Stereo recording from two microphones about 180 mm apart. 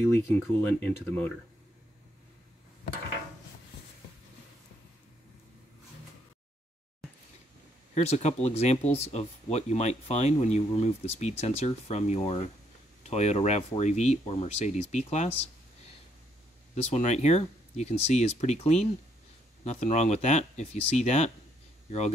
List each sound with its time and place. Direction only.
0.0 s speech: 15° left (ahead or behind)
7.9 s speech: 35° left (ahead or behind)
16.7 s speech: 40° left (ahead or behind)